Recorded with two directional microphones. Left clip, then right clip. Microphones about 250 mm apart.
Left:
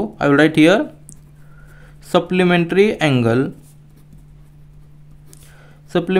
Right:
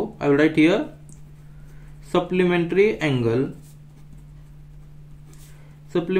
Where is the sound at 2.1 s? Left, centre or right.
Left.